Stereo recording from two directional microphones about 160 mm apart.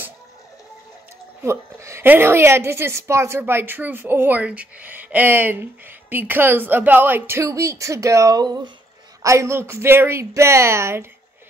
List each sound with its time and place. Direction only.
1.4 s a woman's voice: 15° right (ahead or behind)